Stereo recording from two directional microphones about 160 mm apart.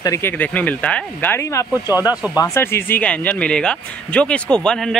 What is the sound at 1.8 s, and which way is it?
Speech, 15° right (ahead or behind).